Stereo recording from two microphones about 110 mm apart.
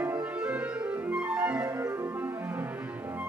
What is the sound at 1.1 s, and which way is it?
Clarinet, 10° right (ahead or behind).